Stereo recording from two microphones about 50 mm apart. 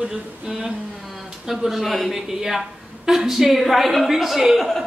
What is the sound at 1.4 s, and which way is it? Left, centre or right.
A man's voice, centre.